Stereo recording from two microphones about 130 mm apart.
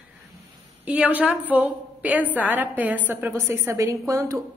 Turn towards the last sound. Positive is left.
turn(degrees=-25)  # may be behind; listen again after turning